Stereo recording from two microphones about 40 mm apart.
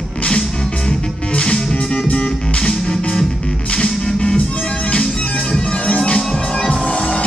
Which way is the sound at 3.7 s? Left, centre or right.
Centre.